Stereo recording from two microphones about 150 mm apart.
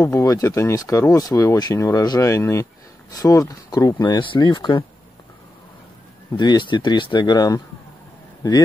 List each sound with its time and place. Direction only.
0.0 s speech: 10° left (ahead or behind)
0.3 s speech: 20° left (ahead or behind)
6.3 s a man's voice: 30° left (ahead or behind)